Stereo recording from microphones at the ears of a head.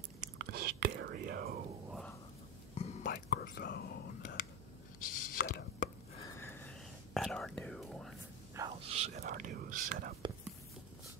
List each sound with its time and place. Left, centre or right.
0.2 s whispering: right
2.7 s whispering: left
5.0 s chopping: left
7.2 s whispering: centre
8.5 s whispering: right